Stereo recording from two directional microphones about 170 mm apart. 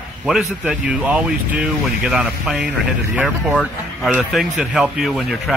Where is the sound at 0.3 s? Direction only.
5° right (ahead or behind).